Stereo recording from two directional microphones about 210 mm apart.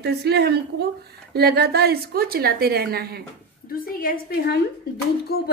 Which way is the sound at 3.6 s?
45° left (ahead or behind).